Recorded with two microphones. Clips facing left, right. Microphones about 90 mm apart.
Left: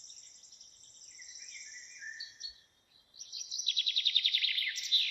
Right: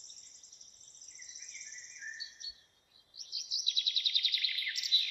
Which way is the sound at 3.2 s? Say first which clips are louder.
Right 3 dB; 15° right (ahead or behind).